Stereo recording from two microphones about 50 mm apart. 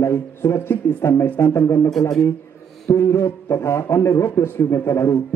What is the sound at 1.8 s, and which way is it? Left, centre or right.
Speech, centre.